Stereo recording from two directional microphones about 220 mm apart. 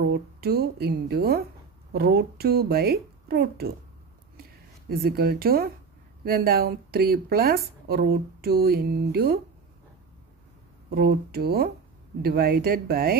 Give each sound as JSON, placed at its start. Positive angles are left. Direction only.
{"t": 0.0, "sound": "a woman's voice", "side_deg": -45}
{"t": 4.4, "sound": "a sound", "side_deg": -45}
{"t": 6.2, "sound": "a woman's voice", "side_deg": -45}
{"t": 10.9, "sound": "a woman's voice", "side_deg": -45}